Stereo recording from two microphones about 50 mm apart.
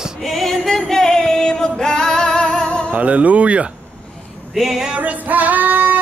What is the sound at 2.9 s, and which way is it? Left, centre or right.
Male singing, right.